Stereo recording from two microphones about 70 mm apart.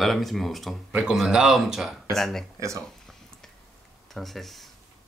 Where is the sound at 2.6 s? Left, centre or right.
Right.